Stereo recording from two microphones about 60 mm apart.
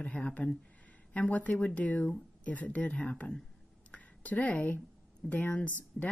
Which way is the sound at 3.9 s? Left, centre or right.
Centre.